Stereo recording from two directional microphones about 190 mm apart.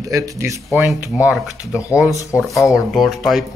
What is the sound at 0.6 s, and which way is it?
Speech, centre (ahead or behind).